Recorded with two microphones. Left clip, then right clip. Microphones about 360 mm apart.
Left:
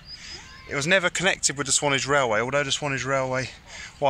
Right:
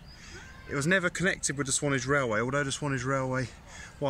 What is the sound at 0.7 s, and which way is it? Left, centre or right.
Speech, centre.